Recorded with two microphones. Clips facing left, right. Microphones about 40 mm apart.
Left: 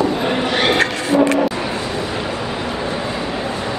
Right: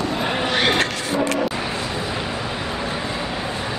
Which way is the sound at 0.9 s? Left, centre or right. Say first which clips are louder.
Left 5 dB; left.